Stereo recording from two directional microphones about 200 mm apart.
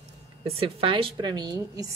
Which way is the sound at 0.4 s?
25° right (ahead or behind).